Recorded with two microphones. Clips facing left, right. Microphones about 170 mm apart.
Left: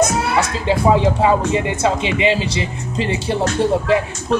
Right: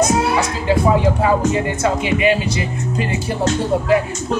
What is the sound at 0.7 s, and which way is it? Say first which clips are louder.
Speech: even; 25° left (ahead or behind).